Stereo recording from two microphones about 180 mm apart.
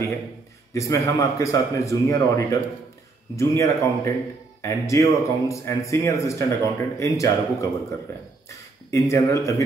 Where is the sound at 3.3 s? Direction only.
15° left (ahead or behind).